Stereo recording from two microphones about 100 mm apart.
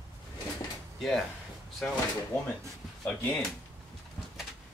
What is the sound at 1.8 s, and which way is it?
Speech, 10° left (ahead or behind).